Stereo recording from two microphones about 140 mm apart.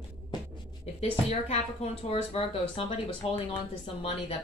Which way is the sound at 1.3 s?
50° left (ahead or behind).